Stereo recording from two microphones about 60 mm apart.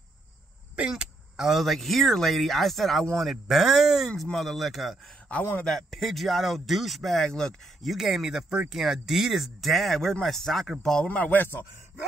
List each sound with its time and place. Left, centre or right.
0.7 s speech: centre
7.9 s speech: centre
11.1 s speech: left